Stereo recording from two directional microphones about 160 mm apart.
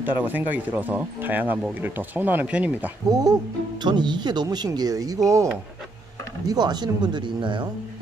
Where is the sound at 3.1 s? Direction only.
25° right (ahead or behind).